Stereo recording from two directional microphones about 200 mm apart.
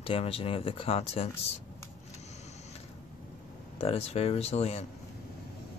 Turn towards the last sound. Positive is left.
turn(degrees=30)  # may be behind; listen again after turning